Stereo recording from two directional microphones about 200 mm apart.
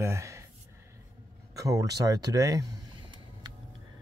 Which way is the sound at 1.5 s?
15° right (ahead or behind).